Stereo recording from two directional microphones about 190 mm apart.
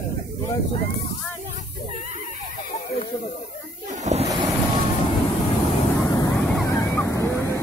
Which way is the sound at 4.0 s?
35° right (ahead or behind).